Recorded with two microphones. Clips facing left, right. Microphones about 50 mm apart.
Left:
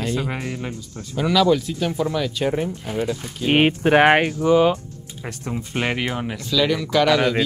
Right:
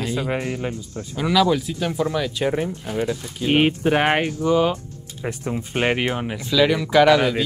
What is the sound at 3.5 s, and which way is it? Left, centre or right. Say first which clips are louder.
Speech: left 2 dB; left.